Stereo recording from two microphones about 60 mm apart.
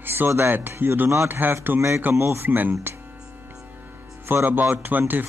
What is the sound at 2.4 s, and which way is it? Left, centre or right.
Speech, right.